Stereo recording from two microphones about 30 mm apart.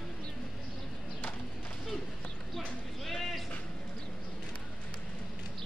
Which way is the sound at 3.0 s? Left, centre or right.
Centre.